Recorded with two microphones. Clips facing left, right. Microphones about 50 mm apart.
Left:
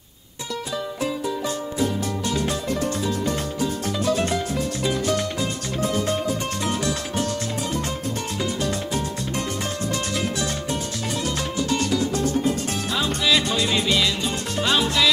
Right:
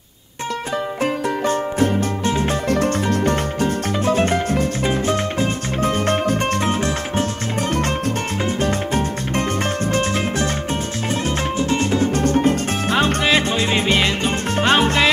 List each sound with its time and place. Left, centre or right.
1.0 s music: right
2.7 s music: right
4.0 s music: right
8.5 s music: right